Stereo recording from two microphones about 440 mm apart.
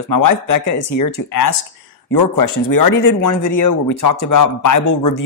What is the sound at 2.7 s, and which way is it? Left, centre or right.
A man's voice, left.